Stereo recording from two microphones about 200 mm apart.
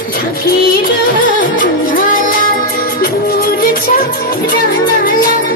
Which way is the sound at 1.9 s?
45° left (ahead or behind).